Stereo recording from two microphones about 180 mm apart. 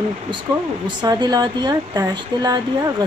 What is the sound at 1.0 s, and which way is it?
Speech, 25° right (ahead or behind).